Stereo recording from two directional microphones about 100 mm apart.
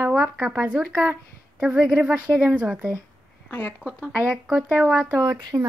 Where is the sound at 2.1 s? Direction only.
20° right (ahead or behind).